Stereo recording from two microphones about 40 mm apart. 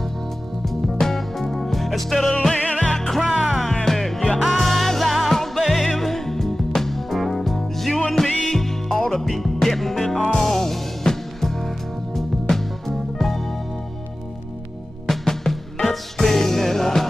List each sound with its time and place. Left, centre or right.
0.7 s music: centre
2.5 s music: left
3.3 s music: centre
3.8 s music: centre
15.0 s music: centre